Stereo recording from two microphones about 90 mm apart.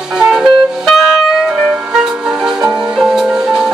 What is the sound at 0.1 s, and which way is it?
Music, 5° right (ahead or behind).